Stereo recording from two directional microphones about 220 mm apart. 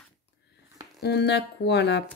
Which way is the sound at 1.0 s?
50° left (ahead or behind).